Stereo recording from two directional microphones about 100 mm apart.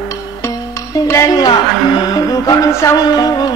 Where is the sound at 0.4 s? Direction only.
30° left (ahead or behind).